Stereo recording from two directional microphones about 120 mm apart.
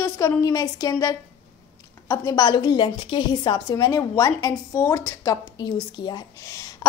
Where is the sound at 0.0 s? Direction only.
25° left (ahead or behind).